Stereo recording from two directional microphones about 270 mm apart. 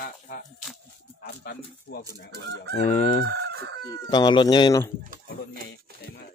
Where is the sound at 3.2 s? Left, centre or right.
Right.